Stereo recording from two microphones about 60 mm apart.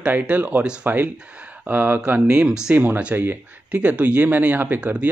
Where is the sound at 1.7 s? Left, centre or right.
Right; by 2.7 s centre.